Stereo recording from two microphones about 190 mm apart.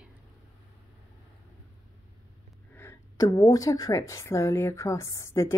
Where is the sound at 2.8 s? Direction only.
15° left (ahead or behind).